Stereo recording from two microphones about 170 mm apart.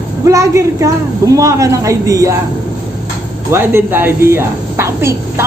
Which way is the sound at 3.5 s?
15° right (ahead or behind).